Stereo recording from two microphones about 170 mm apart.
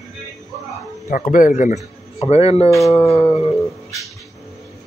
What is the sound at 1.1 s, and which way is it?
A man's voice, 50° left (ahead or behind).